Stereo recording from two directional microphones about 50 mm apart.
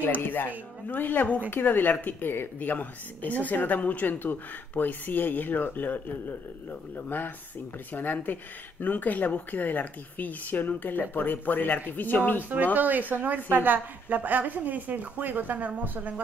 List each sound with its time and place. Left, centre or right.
0.0 s speech: left
12.7 s a woman's voice: right